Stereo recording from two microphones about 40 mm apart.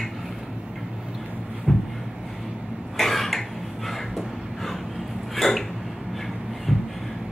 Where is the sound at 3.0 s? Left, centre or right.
Centre.